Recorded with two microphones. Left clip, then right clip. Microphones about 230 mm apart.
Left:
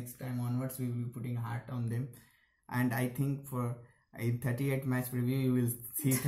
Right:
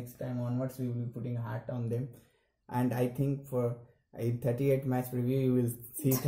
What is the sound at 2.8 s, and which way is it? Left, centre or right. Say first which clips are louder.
Speech: right 3 dB; centre.